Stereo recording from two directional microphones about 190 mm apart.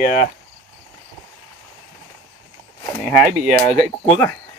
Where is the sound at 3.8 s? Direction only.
15° left (ahead or behind).